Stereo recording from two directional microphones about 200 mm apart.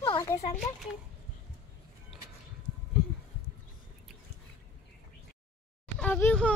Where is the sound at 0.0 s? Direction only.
25° left (ahead or behind).